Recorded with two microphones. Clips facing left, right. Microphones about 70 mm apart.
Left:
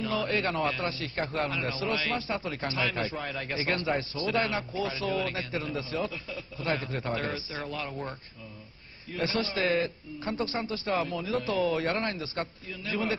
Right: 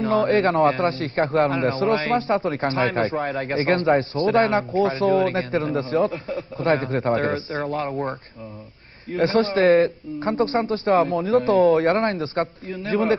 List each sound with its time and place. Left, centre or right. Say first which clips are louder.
0.0 s a man's voice: right 11 dB; right